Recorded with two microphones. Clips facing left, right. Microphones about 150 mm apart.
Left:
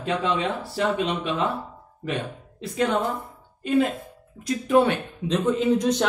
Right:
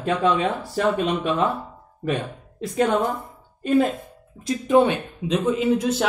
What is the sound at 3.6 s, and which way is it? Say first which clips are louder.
Speech: right 2 dB; 45° right (ahead or behind).